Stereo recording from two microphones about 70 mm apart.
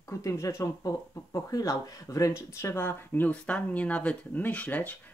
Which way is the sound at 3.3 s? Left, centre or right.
Centre.